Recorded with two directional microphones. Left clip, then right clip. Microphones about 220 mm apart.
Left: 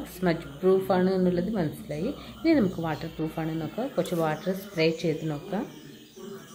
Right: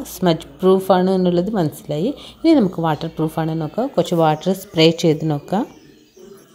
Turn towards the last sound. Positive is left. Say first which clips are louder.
# right 11 dB
turn(degrees=-30)  # may be behind; listen again after turning